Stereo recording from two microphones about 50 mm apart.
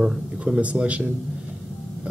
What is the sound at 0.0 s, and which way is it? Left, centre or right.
Speech, centre.